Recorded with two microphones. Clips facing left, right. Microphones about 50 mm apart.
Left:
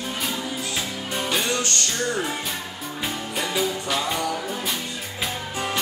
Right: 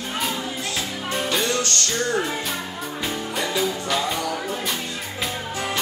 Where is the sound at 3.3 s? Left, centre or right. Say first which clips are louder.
Right 1 dB; centre.